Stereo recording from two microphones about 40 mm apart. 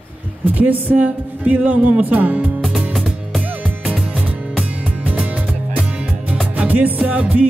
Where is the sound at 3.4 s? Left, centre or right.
Right.